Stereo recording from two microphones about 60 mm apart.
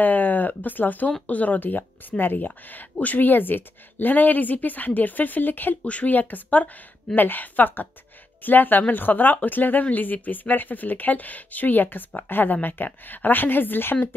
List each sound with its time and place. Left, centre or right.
0.0 s speech: left